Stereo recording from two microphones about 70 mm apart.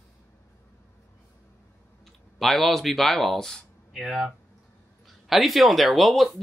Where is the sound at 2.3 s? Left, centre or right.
Centre.